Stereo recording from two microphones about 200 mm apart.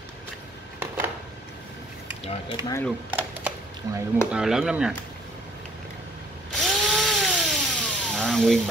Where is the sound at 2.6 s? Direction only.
15° right (ahead or behind).